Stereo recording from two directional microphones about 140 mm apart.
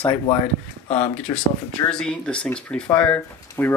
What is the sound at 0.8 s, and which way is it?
Speech, 55° left (ahead or behind).